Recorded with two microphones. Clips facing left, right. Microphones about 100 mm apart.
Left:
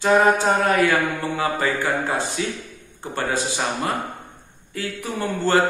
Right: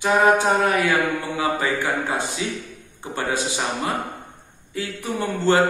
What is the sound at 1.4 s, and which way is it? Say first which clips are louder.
Speech: even; 15° right (ahead or behind).